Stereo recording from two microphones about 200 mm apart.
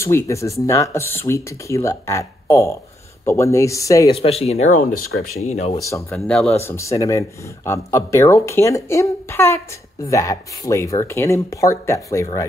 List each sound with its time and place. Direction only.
0.0 s speech: 15° left (ahead or behind)
4.1 s speech: 30° left (ahead or behind)
4.9 s speech: 90° left
5.4 s speech: 35° left (ahead or behind)
5.8 s speech: 15° left (ahead or behind)
6.1 s speech: 5° left (ahead or behind)
6.6 s speech: 15° left (ahead or behind)